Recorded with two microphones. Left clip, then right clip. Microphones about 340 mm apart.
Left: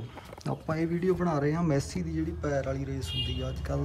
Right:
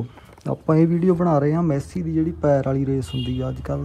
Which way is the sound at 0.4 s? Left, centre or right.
Centre.